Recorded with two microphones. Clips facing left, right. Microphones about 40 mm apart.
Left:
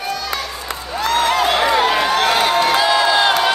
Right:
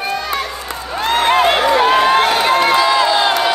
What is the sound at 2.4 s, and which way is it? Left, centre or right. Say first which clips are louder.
Run: right 2 dB; right.